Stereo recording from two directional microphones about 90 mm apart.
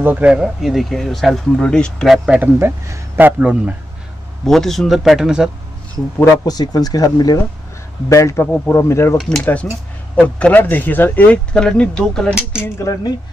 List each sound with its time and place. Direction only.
0.0 s speech: 20° right (ahead or behind)
0.3 s speech: 5° right (ahead or behind)
2.0 s speech: 5° right (ahead or behind)
2.6 s speech: 25° right (ahead or behind)
4.5 s speech: 5° left (ahead or behind)
6.1 s speech: 20° left (ahead or behind)
6.4 s speech: 45° left (ahead or behind)
8.5 s speech: 20° left (ahead or behind)
8.8 s speech: 30° left (ahead or behind)
9.4 s speech: 15° left (ahead or behind)